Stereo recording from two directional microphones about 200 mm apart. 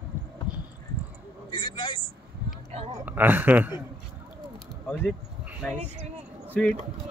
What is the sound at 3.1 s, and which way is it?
Speech, 10° right (ahead or behind).